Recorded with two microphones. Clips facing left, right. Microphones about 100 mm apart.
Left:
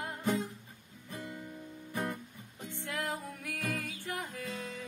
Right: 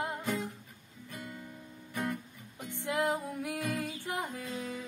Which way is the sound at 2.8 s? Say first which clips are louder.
Right 6 dB; 20° right (ahead or behind).